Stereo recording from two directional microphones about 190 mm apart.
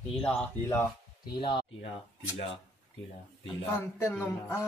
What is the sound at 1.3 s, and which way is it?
Speech, 25° left (ahead or behind).